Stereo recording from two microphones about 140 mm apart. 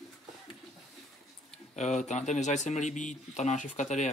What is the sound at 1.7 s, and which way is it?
Speech, 55° left (ahead or behind).